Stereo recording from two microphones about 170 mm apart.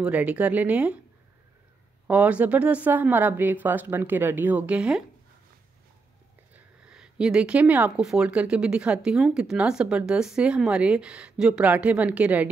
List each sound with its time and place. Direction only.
0.0 s speech: 10° right (ahead or behind)
2.0 s speech: 10° right (ahead or behind)
6.5 s speech: 5° right (ahead or behind)